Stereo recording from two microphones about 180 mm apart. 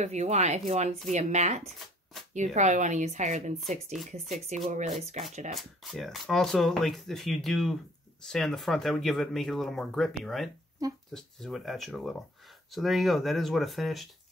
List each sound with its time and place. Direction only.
0.0 s speech: 40° right (ahead or behind)
5.5 s speech: centre (ahead or behind)
10.8 s speech: 20° right (ahead or behind)
11.1 s speech: centre (ahead or behind)